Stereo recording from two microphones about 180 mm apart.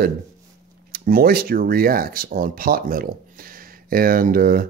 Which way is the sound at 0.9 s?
55° right (ahead or behind).